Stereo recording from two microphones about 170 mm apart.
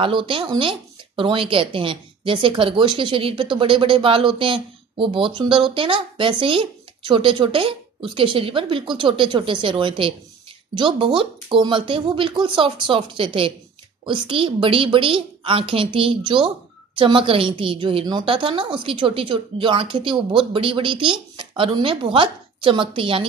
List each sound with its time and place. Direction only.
0.0 s speech: 30° right (ahead or behind)